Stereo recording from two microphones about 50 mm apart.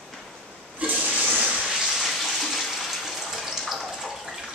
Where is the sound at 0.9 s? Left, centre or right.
Centre.